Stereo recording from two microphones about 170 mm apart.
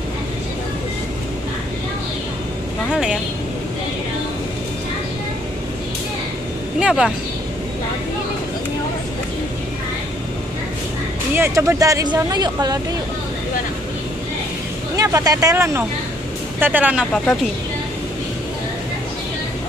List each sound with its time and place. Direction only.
2.9 s speech: 5° right (ahead or behind)
6.8 s vehicle: 5° right (ahead or behind)
11.3 s speech: 15° right (ahead or behind)
15.0 s speech: 20° right (ahead or behind)